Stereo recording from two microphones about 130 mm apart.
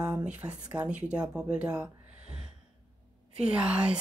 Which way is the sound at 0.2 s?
10° right (ahead or behind).